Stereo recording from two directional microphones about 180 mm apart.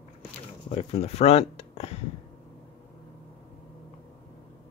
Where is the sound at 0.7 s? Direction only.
35° left (ahead or behind).